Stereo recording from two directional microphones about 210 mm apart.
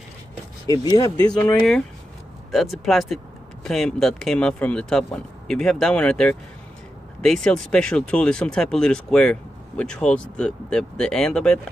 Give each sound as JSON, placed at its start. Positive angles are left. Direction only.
{"t": 0.7, "sound": "speech", "side_deg": 20}
{"t": 2.5, "sound": "speech", "side_deg": 0}